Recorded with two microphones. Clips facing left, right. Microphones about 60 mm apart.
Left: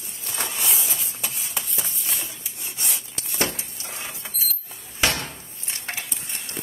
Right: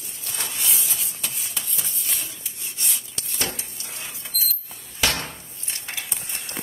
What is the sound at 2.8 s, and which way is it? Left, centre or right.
Rub, left.